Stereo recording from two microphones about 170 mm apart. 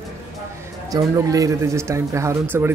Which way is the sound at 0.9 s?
20° right (ahead or behind).